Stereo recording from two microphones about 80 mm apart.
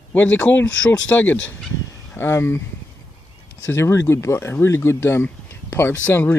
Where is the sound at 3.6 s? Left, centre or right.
Left.